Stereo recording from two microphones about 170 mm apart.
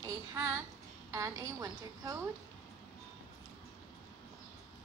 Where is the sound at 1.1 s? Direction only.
20° right (ahead or behind).